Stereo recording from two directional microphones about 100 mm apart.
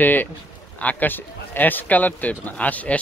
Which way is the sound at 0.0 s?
20° left (ahead or behind).